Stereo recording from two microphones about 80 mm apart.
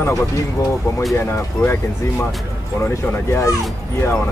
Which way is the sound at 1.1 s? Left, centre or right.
Left.